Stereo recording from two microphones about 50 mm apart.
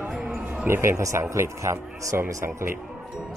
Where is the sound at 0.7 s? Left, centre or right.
Right.